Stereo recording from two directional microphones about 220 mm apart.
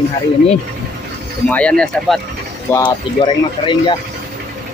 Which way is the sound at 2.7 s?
20° left (ahead or behind).